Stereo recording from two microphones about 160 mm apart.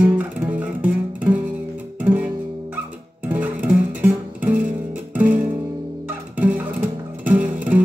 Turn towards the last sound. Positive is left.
turn(degrees=-10)  # may be behind; listen again after turning